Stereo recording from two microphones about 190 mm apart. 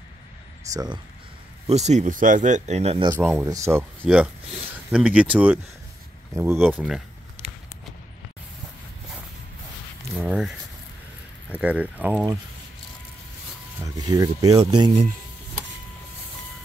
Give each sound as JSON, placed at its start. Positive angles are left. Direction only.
{"t": 0.7, "sound": "speech", "side_deg": -20}
{"t": 1.7, "sound": "speech", "side_deg": -35}
{"t": 3.2, "sound": "speech", "side_deg": -10}
{"t": 10.1, "sound": "speech", "side_deg": -5}
{"t": 11.5, "sound": "speech", "side_deg": -5}
{"t": 13.8, "sound": "speech", "side_deg": -20}